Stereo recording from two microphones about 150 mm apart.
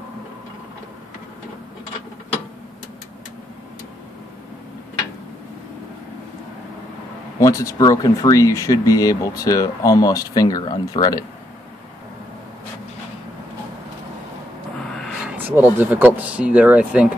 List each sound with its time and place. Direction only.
7.3 s speech: 20° left (ahead or behind)
15.3 s speech: 10° right (ahead or behind)